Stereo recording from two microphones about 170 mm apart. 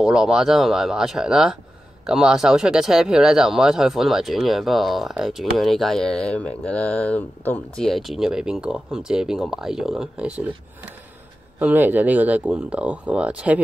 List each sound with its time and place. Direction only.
0.0 s speech: 5° right (ahead or behind)
11.6 s speech: 10° right (ahead or behind)